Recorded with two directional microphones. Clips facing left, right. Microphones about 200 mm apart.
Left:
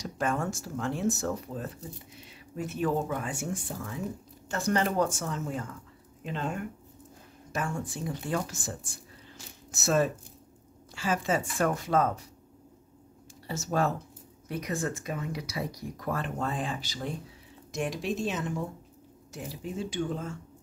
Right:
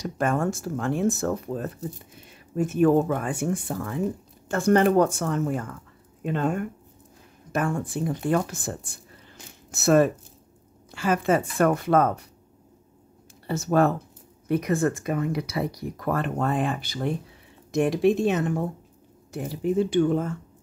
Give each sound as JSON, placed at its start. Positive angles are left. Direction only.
{"t": 0.0, "sound": "speech", "side_deg": -55}
{"t": 13.5, "sound": "speech", "side_deg": -60}